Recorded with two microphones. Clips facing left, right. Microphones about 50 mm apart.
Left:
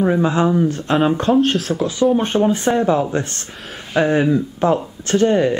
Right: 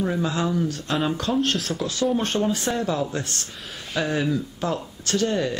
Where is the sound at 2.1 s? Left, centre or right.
Left.